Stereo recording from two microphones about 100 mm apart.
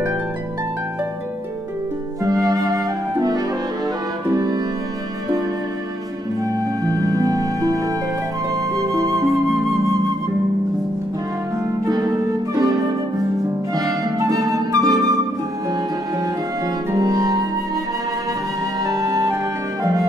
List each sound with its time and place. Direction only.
2.2 s music: 40° right (ahead or behind)
6.9 s music: 40° right (ahead or behind)
8.7 s flute: 35° right (ahead or behind)
9.5 s flute: centre (ahead or behind)
11.8 s harp: 35° right (ahead or behind)
13.7 s flute: 35° right (ahead or behind)
16.9 s music: 40° right (ahead or behind)
18.9 s music: 40° right (ahead or behind)